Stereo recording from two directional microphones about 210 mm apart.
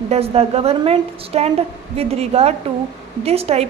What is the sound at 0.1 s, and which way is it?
A woman's voice, 30° right (ahead or behind).